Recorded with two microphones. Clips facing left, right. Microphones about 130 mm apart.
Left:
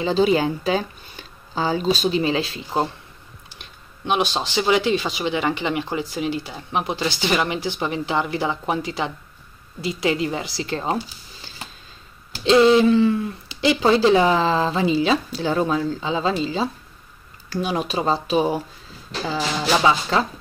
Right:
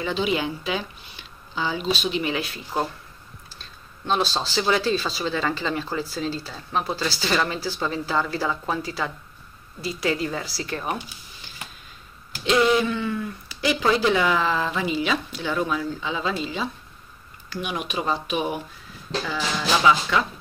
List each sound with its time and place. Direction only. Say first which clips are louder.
0.0 s speech: left 6 dB; 35° left (ahead or behind)